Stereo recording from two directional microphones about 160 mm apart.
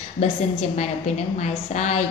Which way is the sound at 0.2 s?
45° left (ahead or behind).